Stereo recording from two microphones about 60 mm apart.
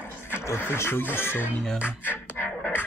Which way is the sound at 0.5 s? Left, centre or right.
Left.